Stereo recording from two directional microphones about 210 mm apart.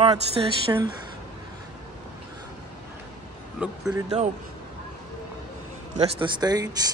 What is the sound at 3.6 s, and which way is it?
Speech, 5° right (ahead or behind).